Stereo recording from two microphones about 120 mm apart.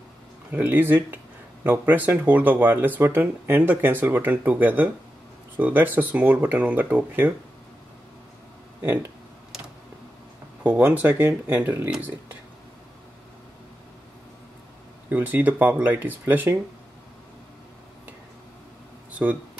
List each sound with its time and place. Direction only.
0.5 s speech: 15° right (ahead or behind)
8.8 s speech: 20° right (ahead or behind)
10.6 s speech: 10° right (ahead or behind)
15.0 s speech: 15° right (ahead or behind)